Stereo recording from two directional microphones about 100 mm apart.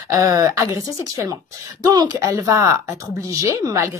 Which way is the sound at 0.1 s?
30° right (ahead or behind).